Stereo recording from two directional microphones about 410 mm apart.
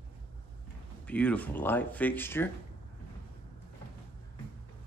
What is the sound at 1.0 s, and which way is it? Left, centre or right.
Speech, centre.